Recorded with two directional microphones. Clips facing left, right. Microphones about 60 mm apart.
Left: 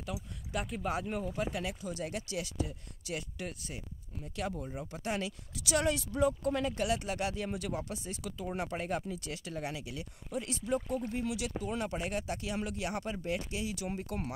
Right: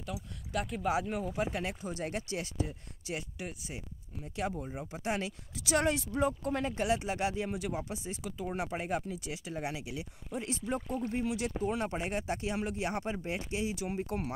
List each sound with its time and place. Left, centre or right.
0.0 s speech: centre
0.7 s speech: centre
1.5 s speech: right
3.3 s speech: centre
11.2 s speech: right